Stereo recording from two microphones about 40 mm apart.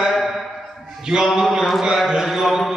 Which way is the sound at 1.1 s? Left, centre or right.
Centre.